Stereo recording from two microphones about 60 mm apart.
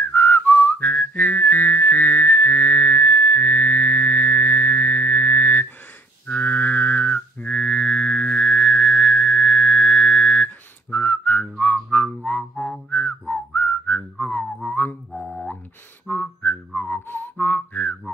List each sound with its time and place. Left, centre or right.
0.1 s whistling: left
6.3 s music: left
11.5 s whistling: centre
12.3 s music: centre
13.3 s whistling: left
14.3 s music: left
15.1 s a sound: centre
16.1 s whistling: left